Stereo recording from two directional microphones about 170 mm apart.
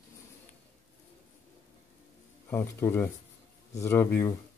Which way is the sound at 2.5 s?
15° left (ahead or behind).